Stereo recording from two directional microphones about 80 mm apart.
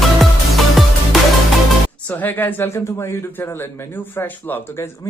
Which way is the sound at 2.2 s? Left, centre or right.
Left.